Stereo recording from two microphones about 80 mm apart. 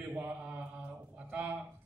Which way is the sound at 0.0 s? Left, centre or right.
Right.